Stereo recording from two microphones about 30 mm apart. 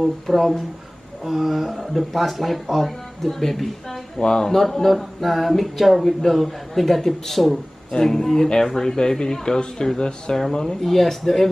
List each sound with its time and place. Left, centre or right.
0.0 s a sound: centre
3.3 s a woman's voice: centre
4.2 s speech: left
4.5 s a sound: centre
7.9 s a woman's voice: centre
10.3 s a woman's voice: centre